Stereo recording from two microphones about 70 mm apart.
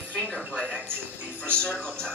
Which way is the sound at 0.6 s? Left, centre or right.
Right.